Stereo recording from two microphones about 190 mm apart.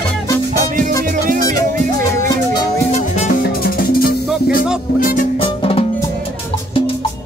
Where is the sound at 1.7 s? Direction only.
45° right (ahead or behind).